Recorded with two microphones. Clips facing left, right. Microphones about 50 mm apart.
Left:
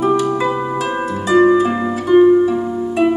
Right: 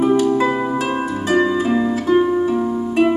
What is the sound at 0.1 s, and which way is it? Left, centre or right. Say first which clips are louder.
Harp: right 1 dB; left.